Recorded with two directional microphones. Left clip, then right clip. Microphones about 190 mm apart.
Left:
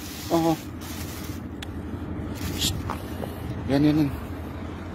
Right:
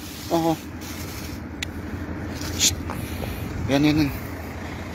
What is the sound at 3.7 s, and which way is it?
Speech, 20° left (ahead or behind).